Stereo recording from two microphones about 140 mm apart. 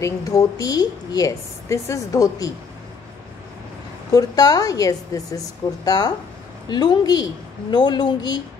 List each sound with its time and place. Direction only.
0.0 s a woman's voice: 25° left (ahead or behind)
4.1 s a woman's voice: 25° left (ahead or behind)